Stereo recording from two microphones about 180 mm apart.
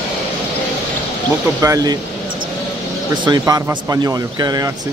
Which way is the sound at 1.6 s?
20° right (ahead or behind).